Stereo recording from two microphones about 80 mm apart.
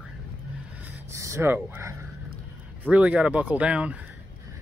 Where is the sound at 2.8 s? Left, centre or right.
Centre.